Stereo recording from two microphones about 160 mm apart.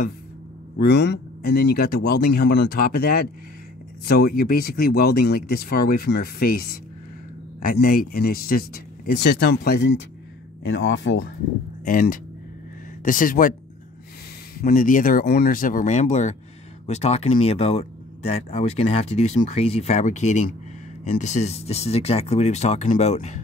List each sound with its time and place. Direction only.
0.8 s speech: 90° left
11.8 s speech: 60° left (ahead or behind)
14.6 s speech: 55° left (ahead or behind)